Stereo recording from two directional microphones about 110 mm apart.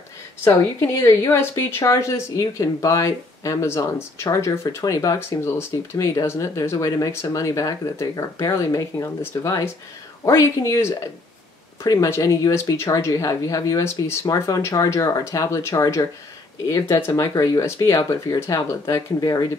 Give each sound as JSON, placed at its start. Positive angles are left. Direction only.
{"t": 0.5, "sound": "a woman's voice", "side_deg": 30}